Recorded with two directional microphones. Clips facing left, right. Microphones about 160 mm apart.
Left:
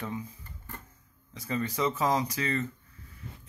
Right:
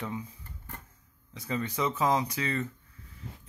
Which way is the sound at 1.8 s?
15° right (ahead or behind).